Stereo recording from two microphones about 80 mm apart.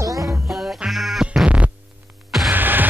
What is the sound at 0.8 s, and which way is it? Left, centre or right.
Music, centre.